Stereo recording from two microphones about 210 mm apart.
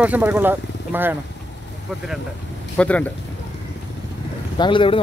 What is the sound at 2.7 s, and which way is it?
Speech, 5° left (ahead or behind).